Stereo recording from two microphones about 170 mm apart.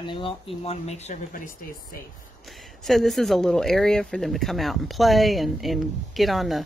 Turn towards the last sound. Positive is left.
turn(degrees=0)  # may be behind; listen again after turning